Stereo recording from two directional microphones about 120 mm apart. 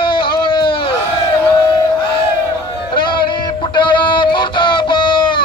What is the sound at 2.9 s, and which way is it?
Music, 40° left (ahead or behind).